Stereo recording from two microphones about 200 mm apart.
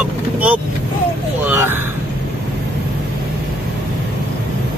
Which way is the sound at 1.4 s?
10° right (ahead or behind).